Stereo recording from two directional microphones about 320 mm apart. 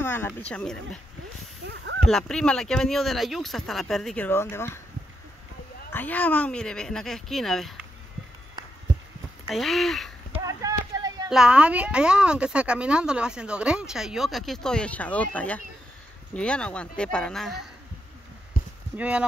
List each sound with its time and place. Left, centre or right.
0.0 s speech: centre
2.0 s speech: centre
5.9 s speech: centre
9.5 s a sound: centre
10.4 s speech: centre
18.6 s a sound: left
18.9 s speech: centre